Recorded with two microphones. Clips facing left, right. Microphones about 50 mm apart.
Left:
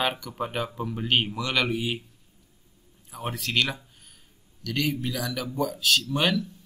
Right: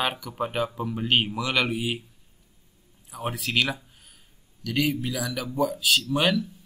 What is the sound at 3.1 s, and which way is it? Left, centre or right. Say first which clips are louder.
Speech: right 1 dB; centre.